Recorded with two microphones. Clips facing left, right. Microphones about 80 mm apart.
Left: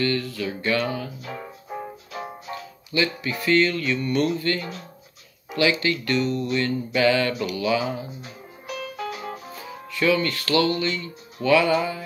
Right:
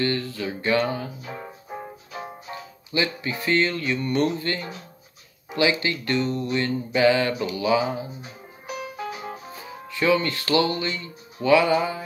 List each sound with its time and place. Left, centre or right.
0.0 s speech: right
1.7 s music: centre
2.5 s speech: right
5.5 s music: right